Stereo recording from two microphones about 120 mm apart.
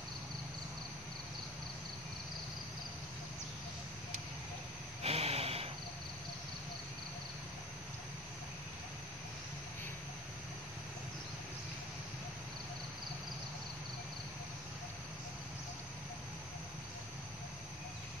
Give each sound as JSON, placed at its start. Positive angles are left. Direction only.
{"t": 5.0, "sound": "snort", "side_deg": -60}